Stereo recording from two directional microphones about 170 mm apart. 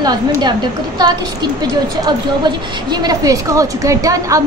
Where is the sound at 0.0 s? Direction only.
25° right (ahead or behind).